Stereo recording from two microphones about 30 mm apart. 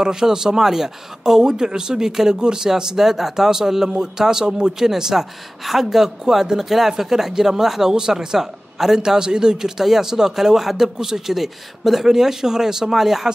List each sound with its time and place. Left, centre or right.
0.0 s speech: right
1.7 s a man's voice: right; by 9.0 s centre
9.0 s speech: right